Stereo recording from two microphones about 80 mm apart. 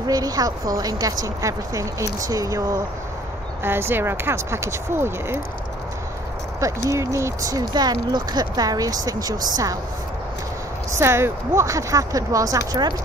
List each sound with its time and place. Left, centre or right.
0.0 s speech: right
3.6 s speech: right
6.6 s speech: right
7.7 s speech: right
11.0 s speech: right